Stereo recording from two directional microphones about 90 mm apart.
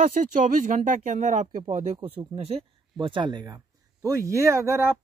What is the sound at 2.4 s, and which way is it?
Speech, 80° right.